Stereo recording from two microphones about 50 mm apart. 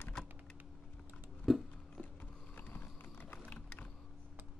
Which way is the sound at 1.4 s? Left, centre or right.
Centre.